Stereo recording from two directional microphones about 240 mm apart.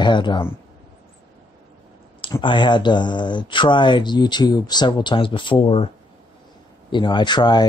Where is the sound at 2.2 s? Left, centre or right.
Centre.